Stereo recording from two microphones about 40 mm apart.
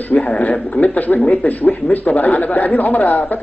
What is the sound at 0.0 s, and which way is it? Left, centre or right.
Speech, left.